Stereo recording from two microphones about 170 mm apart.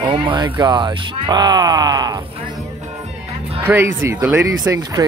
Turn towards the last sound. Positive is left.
turn(degrees=-20)  # may be behind; listen again after turning